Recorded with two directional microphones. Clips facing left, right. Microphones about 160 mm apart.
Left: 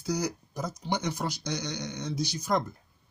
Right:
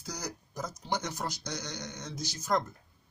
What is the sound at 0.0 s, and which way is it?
Speech, 5° left (ahead or behind).